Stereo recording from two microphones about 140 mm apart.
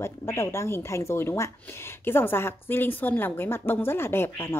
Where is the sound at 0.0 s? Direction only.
20° left (ahead or behind).